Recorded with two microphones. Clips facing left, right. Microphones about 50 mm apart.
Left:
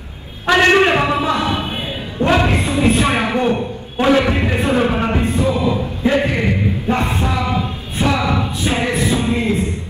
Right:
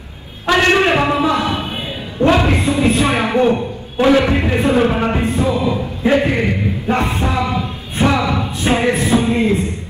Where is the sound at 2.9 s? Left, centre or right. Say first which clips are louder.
Right 1 dB; left.